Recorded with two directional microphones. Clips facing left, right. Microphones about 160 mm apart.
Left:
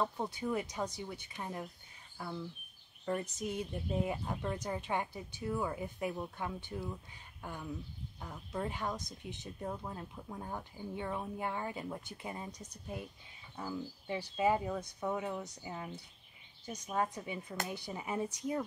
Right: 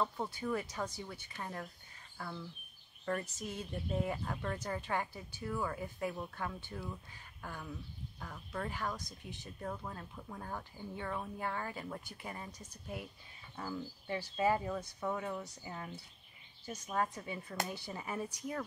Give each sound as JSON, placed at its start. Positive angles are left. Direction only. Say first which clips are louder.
{"t": 0.0, "sound": "speech", "louder": "left 1 dB", "side_deg": 15}